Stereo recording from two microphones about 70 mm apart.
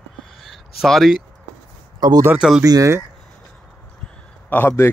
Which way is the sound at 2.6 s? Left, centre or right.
Right.